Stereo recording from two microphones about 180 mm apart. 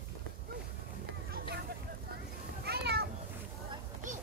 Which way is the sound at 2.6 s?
65° right (ahead or behind).